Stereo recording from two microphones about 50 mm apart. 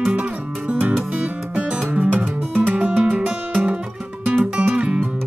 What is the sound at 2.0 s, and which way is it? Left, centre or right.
Music, right.